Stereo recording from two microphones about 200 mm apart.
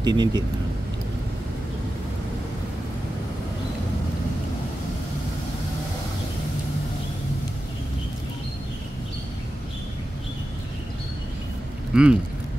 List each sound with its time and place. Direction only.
0.0 s speech: 20° right (ahead or behind)
11.9 s speech: 5° right (ahead or behind)